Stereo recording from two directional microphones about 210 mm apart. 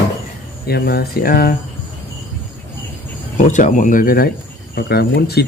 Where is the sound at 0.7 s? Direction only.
50° left (ahead or behind).